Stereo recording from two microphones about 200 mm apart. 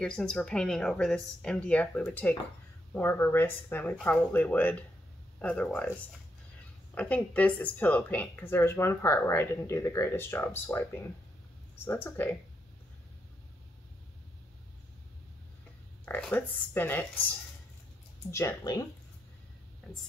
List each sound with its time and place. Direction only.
0.0 s a woman's voice: 5° left (ahead or behind)
7.0 s a woman's voice: 5° left (ahead or behind)
16.1 s a woman's voice: 5° left (ahead or behind)
18.3 s a woman's voice: 15° left (ahead or behind)
19.8 s speech: 5° left (ahead or behind)